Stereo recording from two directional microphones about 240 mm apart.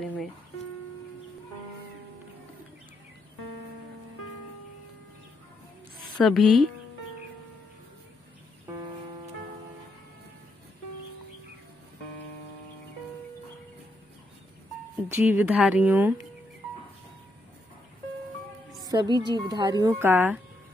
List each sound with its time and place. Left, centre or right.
0.0 s music: centre
6.1 s a woman's voice: centre
15.0 s speech: centre
18.9 s speech: centre